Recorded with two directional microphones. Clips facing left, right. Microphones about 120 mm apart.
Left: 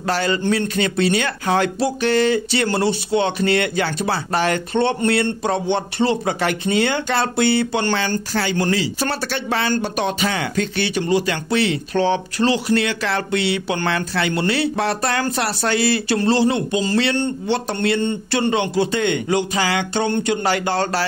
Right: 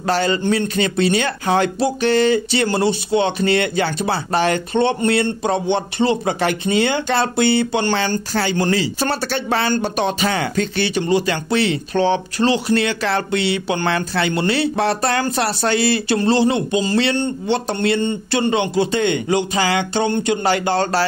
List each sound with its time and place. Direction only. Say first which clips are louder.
0.0 s a man's voice: right 2 dB; 25° right (ahead or behind)